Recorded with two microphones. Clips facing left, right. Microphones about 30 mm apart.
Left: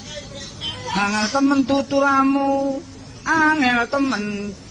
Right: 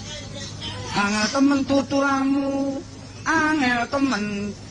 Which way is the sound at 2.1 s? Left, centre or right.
Left.